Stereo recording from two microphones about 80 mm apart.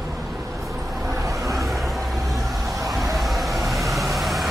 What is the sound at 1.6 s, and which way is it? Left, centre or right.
Vehicle, centre.